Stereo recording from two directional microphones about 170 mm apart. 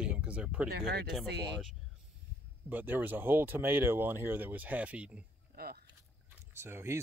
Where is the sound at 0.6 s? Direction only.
70° right (ahead or behind).